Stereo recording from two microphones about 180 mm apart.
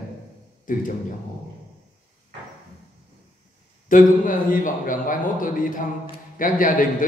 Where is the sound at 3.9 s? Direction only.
45° left (ahead or behind).